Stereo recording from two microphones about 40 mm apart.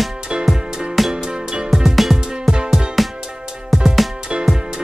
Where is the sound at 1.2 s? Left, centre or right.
Centre.